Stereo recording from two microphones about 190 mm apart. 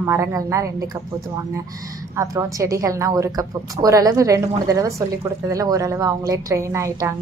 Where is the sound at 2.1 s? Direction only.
15° right (ahead or behind).